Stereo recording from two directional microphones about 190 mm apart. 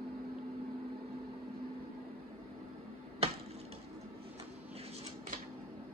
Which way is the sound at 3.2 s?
30° right (ahead or behind).